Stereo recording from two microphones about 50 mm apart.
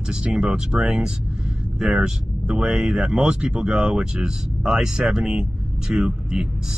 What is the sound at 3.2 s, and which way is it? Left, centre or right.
Speech, right.